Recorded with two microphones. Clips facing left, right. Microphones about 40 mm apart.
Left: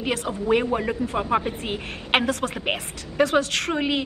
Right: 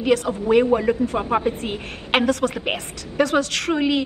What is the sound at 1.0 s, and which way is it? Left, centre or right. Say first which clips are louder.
Speech: right 4 dB; right.